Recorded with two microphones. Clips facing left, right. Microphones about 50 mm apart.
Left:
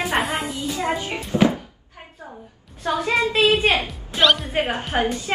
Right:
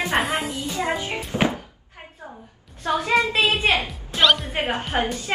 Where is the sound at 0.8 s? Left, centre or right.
Right.